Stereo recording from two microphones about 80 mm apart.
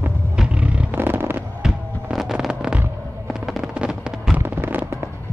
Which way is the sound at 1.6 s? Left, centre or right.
Centre.